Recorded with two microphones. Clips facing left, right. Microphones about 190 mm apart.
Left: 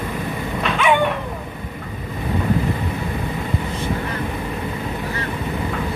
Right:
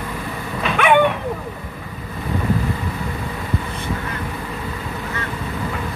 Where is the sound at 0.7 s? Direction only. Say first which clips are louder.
Right 3 dB; 55° right (ahead or behind).